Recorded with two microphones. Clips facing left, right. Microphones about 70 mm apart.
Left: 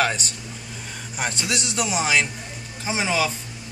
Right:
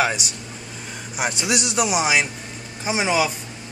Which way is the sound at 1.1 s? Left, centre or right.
Centre.